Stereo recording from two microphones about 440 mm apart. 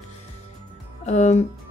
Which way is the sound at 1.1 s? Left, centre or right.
Centre.